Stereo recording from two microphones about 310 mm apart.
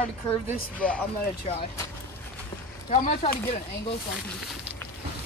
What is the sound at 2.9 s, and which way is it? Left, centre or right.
Speech, left.